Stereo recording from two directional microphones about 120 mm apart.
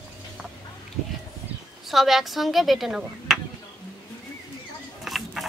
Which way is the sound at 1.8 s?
Centre (ahead or behind).